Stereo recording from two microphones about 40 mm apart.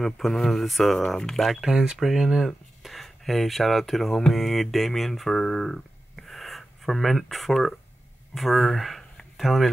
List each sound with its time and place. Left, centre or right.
0.0 s speech: centre
1.0 s speech: left
1.3 s speech: centre
1.6 s speech: centre
2.8 s speech: centre
5.3 s a sound: centre
8.4 s speech: centre